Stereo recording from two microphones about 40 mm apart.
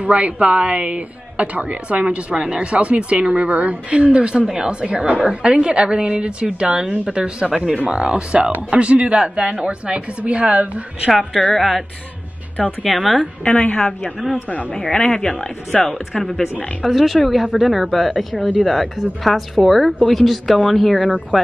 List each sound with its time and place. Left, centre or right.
0.0 s a man's voice: right
11.5 s speech: centre
12.8 s speech: centre
13.4 s a woman's voice: left
13.7 s speech: centre
16.8 s speech: centre
18.4 s speech: left
18.7 s speech: centre